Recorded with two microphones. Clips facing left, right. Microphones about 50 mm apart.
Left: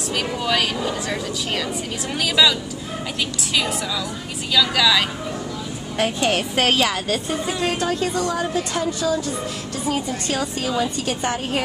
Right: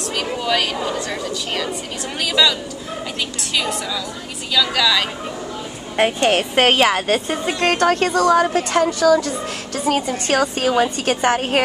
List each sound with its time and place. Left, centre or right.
0.4 s a woman's voice: centre
2.2 s a woman's voice: centre
4.6 s a woman's voice: centre
6.1 s a woman's voice: right
7.6 s a woman's voice: right